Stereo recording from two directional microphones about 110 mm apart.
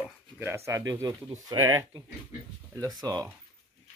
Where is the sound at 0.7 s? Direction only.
30° right (ahead or behind).